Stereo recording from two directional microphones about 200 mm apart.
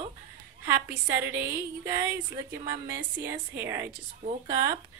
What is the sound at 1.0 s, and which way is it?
A woman's voice, 10° right (ahead or behind).